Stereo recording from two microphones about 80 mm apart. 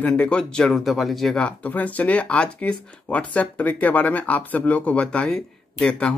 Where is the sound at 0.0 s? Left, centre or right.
Centre.